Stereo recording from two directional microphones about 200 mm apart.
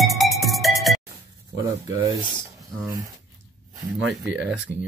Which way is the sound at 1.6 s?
15° right (ahead or behind).